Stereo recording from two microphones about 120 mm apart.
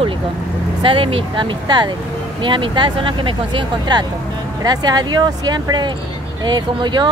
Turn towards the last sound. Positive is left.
turn(degrees=-40)  # may be behind; listen again after turning